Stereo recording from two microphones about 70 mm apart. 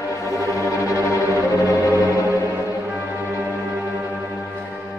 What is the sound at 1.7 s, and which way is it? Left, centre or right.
Music, left.